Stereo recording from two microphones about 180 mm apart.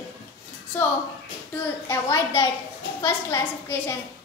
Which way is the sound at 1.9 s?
15° left (ahead or behind).